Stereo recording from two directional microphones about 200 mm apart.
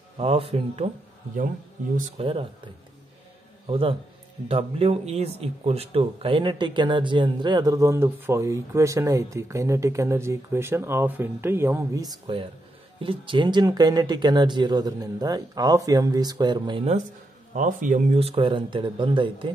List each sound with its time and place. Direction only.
0.2 s speech: 30° right (ahead or behind)
2.0 s speech: 35° right (ahead or behind)
3.6 s a man's voice: 25° right (ahead or behind)
17.6 s speech: 40° right (ahead or behind); by 19.5 s 25° right (ahead or behind)